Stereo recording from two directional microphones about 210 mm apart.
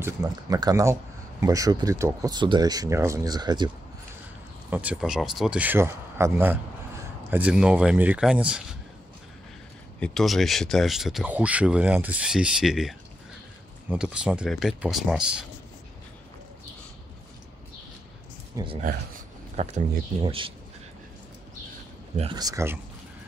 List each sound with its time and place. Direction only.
0.0 s speech: 20° right (ahead or behind)
4.6 s speech: 5° right (ahead or behind)
9.9 s speech: 5° left (ahead or behind)
18.6 s speech: 15° right (ahead or behind)
19.6 s speech: 30° right (ahead or behind)
22.3 s speech: 15° right (ahead or behind)